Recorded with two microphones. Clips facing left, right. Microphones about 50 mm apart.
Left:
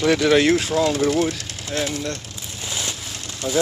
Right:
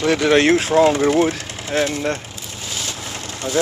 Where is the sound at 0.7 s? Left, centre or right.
Right.